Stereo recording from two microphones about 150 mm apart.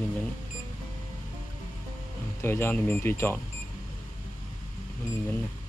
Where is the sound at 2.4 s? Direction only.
15° left (ahead or behind).